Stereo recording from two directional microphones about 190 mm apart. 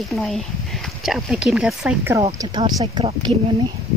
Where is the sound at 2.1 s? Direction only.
20° right (ahead or behind).